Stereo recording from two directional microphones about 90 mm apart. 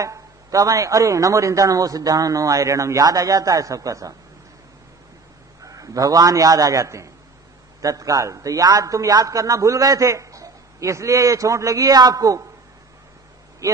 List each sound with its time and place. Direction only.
0.0 s a man's voice: 40° right (ahead or behind)
5.6 s a man's voice: 40° right (ahead or behind)